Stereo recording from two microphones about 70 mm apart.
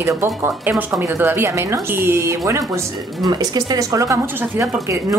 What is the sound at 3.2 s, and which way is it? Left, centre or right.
A woman's voice, right.